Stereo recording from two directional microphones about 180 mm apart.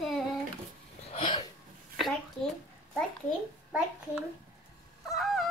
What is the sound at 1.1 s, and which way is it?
Hiccup, 30° left (ahead or behind).